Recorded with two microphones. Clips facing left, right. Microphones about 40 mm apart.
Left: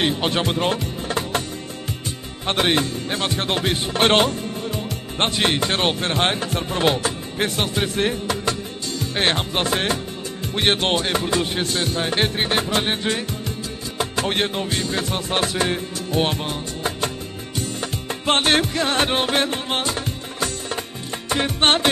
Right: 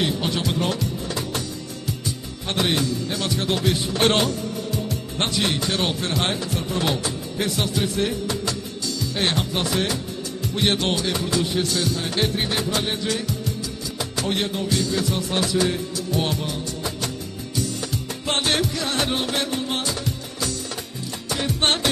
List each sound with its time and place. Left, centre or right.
0.0 s speech: left
1.9 s music: left
5.1 s speech: left
10.5 s music: left